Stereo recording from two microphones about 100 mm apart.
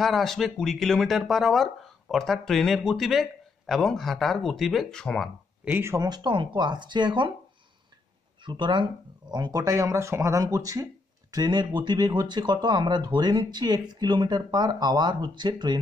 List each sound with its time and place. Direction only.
0.0 s speech: centre (ahead or behind)
5.8 s speech: 25° right (ahead or behind)
6.0 s speech: 50° right (ahead or behind)
8.5 s speech: 50° right (ahead or behind)